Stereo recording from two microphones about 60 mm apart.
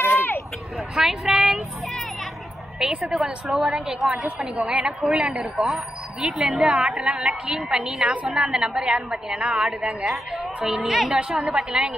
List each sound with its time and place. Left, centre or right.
0.0 s a sound: left
0.7 s vehicle: centre
2.8 s a woman's voice: centre
3.4 s a woman's voice: centre
4.2 s a woman's voice: centre
4.8 s a woman's voice: centre
9.3 s a woman's voice: centre
9.6 s a woman's voice: centre
11.1 s a woman's voice: centre